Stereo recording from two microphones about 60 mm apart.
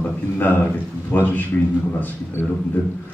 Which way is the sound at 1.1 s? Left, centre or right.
Left.